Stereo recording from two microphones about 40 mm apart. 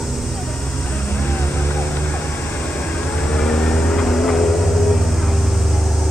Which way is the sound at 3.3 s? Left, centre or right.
Left.